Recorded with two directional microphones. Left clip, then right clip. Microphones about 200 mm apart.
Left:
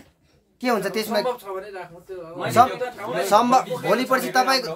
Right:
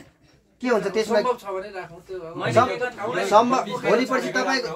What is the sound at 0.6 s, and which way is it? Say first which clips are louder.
Speech: right 1 dB; 55° left (ahead or behind).